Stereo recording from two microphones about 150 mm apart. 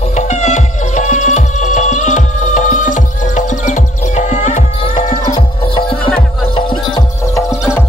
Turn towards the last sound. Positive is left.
turn(degrees=20)  # may be behind; listen again after turning